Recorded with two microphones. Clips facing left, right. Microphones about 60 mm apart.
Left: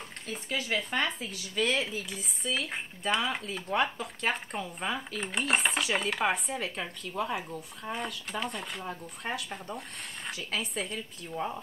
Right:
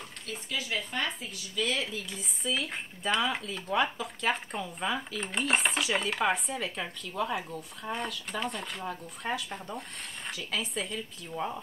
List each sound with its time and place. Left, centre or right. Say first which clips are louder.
0.3 s speech: left 2 dB; left
2.0 s speech: right 1 dB; centre